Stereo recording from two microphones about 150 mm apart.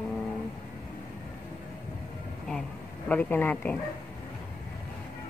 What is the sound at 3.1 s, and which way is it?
Speech, 10° left (ahead or behind).